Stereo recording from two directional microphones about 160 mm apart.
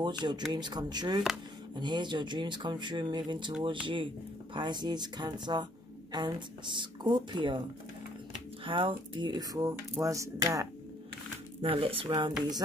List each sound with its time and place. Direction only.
0.0 s speech: 30° right (ahead or behind)
8.6 s speech: 30° right (ahead or behind)
11.6 s speech: 35° right (ahead or behind)